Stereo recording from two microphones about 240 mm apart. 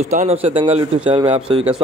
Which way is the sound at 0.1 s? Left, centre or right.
Right.